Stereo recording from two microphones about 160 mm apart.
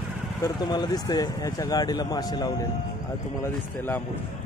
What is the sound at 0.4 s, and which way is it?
Speech, 25° left (ahead or behind).